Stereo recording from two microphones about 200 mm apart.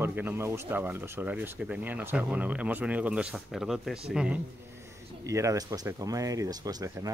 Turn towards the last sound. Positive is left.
turn(degrees=-15)  # may be behind; listen again after turning